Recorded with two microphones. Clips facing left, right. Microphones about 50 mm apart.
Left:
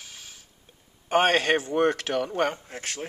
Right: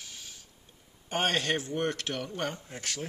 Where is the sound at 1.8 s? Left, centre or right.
Left.